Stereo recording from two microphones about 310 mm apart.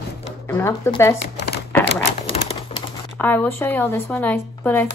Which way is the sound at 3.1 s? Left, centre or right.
Centre.